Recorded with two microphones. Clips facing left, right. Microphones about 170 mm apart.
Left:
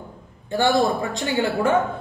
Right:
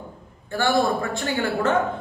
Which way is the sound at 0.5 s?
20° left (ahead or behind).